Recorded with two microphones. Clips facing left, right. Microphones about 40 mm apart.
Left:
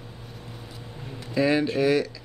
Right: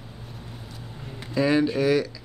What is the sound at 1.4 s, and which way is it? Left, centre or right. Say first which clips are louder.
Speech: right 1 dB; centre.